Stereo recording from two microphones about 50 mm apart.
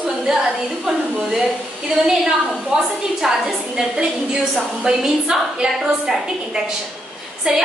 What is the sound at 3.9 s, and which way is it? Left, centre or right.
A woman's voice, centre.